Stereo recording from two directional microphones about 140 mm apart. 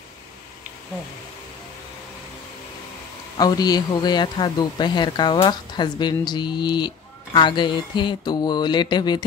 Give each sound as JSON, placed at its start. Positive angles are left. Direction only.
{"t": 3.3, "sound": "speech", "side_deg": 30}